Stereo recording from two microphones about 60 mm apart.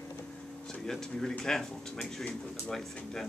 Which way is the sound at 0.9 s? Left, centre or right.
Centre.